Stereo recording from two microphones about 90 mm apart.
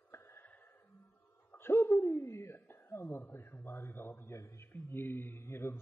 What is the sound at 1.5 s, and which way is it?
A man's voice, 25° left (ahead or behind).